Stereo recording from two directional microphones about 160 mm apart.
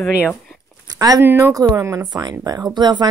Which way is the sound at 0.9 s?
25° right (ahead or behind).